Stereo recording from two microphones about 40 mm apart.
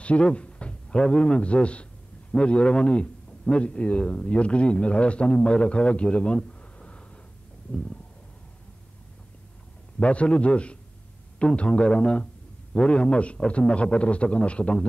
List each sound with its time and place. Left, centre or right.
0.0 s a man's voice: left
9.9 s a man's voice: left